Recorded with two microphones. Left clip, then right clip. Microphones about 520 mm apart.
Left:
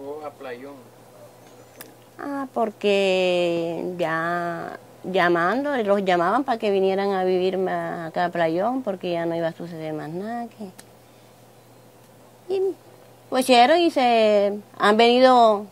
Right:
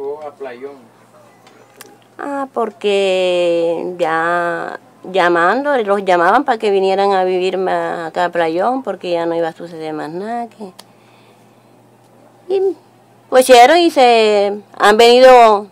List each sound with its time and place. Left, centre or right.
1.8 s speech: left
12.5 s hoot: left
13.3 s speech: left